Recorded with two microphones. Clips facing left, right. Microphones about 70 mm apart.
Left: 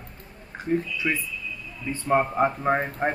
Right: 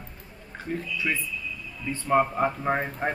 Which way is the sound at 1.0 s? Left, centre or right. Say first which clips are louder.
Left 2 dB; centre.